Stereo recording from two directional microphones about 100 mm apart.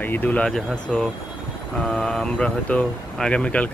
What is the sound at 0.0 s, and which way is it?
Speech, 20° left (ahead or behind).